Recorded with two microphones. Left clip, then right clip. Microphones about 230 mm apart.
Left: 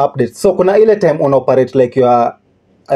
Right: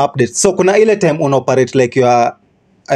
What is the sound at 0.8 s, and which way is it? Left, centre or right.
Speech, right.